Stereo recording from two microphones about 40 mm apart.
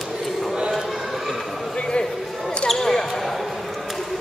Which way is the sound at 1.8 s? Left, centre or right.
Left.